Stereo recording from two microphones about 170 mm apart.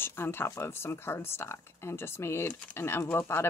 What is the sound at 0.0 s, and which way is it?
Speech, 15° left (ahead or behind).